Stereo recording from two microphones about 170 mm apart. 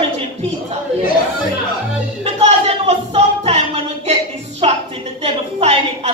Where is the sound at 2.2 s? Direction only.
40° right (ahead or behind).